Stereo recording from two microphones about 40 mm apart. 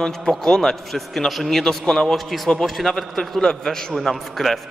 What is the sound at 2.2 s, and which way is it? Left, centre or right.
A man's voice, centre.